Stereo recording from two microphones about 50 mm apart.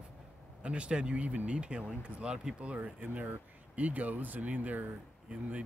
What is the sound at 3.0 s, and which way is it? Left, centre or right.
Speech, right.